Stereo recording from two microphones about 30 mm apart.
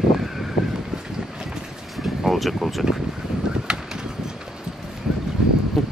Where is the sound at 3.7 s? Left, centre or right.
Right.